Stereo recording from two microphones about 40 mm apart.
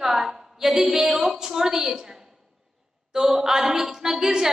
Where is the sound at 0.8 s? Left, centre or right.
Centre.